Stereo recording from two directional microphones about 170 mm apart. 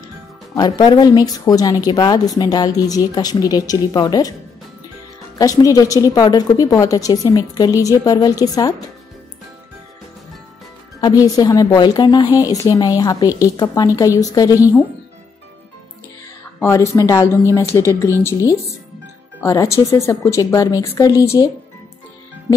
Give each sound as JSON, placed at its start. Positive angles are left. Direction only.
{"t": 0.6, "sound": "a woman's voice", "side_deg": 25}
{"t": 5.4, "sound": "a woman's voice", "side_deg": 20}
{"t": 11.0, "sound": "a woman's voice", "side_deg": 20}
{"t": 16.5, "sound": "a woman's voice", "side_deg": 15}